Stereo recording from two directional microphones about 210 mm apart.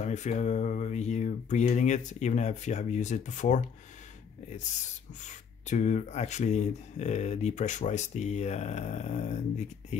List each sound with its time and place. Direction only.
0.0 s speech: 35° left (ahead or behind)
5.2 s speech: 35° left (ahead or behind)